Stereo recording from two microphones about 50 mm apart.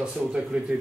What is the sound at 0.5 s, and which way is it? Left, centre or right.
Speech, right.